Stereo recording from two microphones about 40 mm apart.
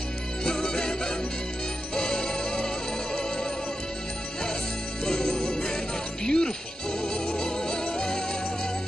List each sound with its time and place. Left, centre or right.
0.4 s music: centre
5.0 s music: centre